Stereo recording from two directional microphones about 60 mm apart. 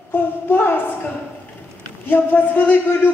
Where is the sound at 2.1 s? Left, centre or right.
Left.